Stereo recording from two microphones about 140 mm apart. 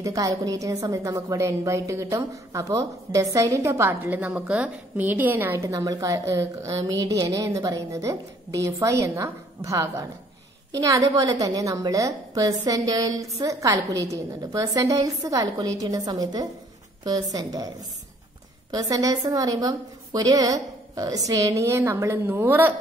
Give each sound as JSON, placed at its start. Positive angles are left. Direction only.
{"t": 0.0, "sound": "a woman's voice", "side_deg": -25}
{"t": 5.7, "sound": "a woman's voice", "side_deg": -25}
{"t": 18.7, "sound": "a woman's voice", "side_deg": -25}